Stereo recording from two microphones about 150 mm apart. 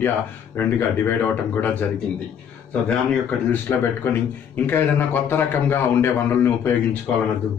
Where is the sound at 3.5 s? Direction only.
15° left (ahead or behind).